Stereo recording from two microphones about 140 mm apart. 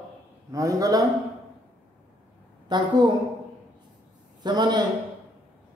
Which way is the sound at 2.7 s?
30° right (ahead or behind).